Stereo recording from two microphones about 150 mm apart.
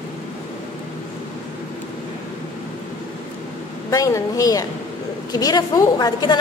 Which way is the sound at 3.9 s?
20° left (ahead or behind).